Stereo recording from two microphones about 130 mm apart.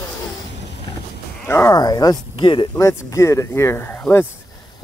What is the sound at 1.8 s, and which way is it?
Speech, 30° left (ahead or behind).